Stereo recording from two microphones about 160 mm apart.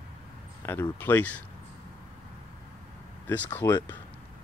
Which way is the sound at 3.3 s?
10° left (ahead or behind).